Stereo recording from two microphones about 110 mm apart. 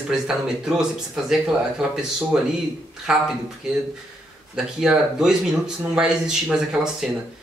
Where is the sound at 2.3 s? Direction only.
5° right (ahead or behind).